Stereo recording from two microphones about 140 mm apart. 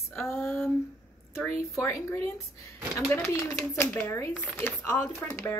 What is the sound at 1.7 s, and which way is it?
A woman's voice, 20° left (ahead or behind).